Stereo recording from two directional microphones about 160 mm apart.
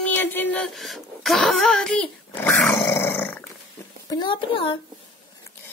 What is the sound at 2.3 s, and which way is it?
Dog, 15° left (ahead or behind).